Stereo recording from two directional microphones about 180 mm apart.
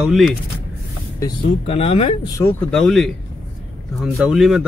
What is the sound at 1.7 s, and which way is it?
Speech, 35° left (ahead or behind).